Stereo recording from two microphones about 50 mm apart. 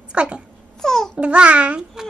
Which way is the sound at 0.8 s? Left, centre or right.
Centre.